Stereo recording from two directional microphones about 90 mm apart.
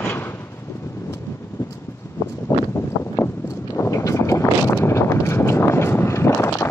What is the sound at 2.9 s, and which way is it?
Wind noise, 40° left (ahead or behind).